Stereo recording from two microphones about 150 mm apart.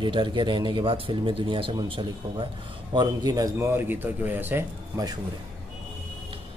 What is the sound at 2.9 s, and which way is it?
Speech, 25° right (ahead or behind).